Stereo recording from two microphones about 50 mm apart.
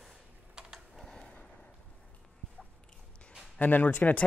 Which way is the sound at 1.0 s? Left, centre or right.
Centre.